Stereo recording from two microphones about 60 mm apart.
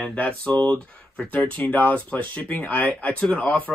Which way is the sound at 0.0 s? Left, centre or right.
Centre.